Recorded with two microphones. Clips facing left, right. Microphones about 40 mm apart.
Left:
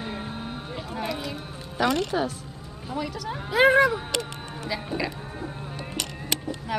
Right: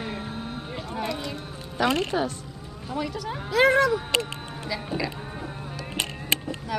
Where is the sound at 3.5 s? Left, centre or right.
Centre.